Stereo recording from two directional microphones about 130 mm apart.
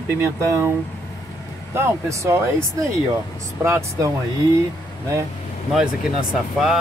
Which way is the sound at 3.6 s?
20° right (ahead or behind).